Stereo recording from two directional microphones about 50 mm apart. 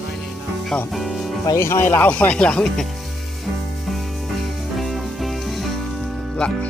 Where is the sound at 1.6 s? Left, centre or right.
Left.